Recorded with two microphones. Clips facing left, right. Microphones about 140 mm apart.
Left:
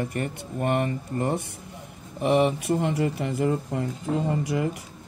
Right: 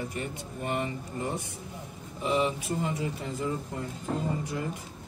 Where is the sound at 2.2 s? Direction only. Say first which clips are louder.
Left 6 dB; 65° left (ahead or behind).